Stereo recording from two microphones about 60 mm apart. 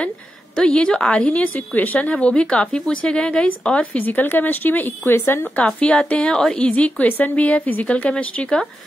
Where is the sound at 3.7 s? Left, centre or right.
Left.